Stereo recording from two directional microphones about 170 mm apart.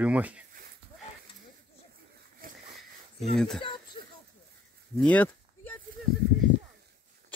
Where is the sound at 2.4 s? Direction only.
60° right (ahead or behind).